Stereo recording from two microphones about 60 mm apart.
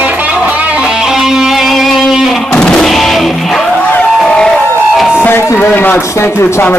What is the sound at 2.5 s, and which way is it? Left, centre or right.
Music, centre.